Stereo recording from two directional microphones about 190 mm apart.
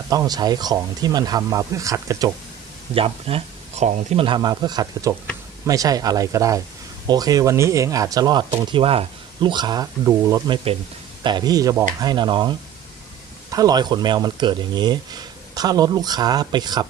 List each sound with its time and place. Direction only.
0.1 s speech: 20° right (ahead or behind)
2.9 s speech: 30° right (ahead or behind)